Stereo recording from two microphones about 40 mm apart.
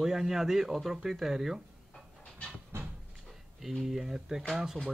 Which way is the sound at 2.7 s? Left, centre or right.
Right.